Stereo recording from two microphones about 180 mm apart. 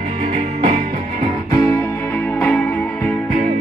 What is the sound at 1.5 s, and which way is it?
Music, 15° left (ahead or behind).